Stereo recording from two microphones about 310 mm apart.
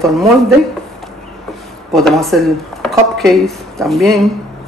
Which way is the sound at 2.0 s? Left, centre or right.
Centre.